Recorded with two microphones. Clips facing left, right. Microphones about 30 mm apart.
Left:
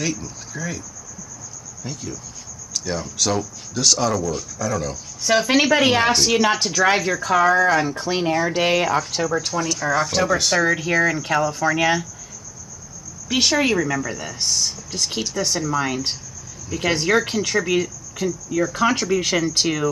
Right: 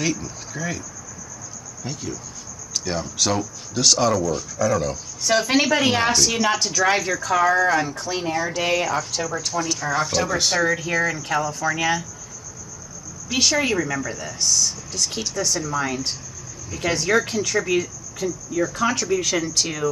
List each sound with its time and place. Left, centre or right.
0.0 s speech: centre
1.9 s speech: centre
5.2 s speech: centre
6.1 s speech: left
7.3 s speech: centre
7.9 s speech: left
9.8 s speech: centre
10.8 s speech: left
13.3 s speech: left
13.7 s speech: centre
14.1 s speech: left